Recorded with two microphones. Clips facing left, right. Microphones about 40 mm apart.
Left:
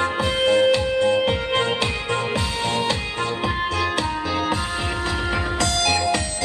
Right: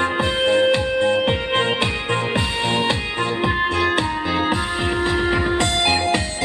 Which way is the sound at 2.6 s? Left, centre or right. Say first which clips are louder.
Right 2 dB; right.